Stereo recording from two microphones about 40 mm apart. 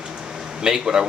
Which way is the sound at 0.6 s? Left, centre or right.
Centre.